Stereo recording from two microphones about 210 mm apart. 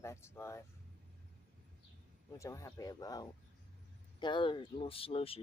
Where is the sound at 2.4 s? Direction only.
15° left (ahead or behind).